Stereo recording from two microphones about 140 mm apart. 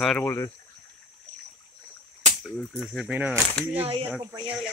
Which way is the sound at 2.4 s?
Centre (ahead or behind).